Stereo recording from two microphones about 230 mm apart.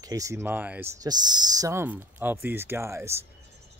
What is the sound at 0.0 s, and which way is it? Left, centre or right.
Speech, centre.